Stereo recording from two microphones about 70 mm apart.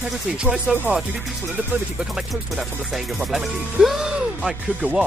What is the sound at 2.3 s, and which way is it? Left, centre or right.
Speech, centre.